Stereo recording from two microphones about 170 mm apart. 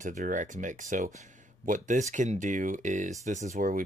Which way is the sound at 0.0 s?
50° right (ahead or behind).